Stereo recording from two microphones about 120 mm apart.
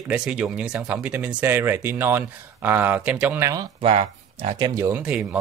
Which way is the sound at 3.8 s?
55° right (ahead or behind).